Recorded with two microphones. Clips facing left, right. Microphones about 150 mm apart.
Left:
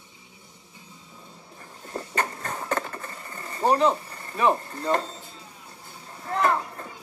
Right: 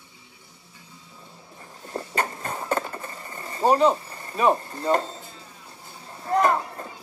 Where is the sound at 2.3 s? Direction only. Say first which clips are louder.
Right 2 dB; 20° right (ahead or behind).